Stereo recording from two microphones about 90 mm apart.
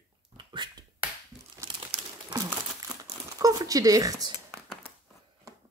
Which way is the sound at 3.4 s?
40° right (ahead or behind).